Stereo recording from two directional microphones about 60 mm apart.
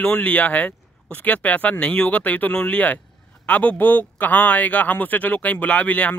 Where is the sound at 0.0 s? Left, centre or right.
Left.